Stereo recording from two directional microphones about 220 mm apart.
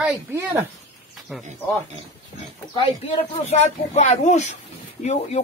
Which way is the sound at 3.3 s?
30° left (ahead or behind).